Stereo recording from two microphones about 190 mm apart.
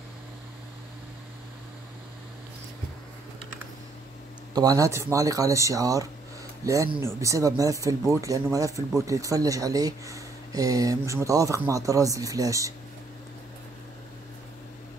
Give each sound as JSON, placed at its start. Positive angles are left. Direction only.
{"t": 4.6, "sound": "speech", "side_deg": -20}